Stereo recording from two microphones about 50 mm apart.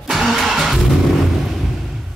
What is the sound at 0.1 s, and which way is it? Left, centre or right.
Vehicle, centre.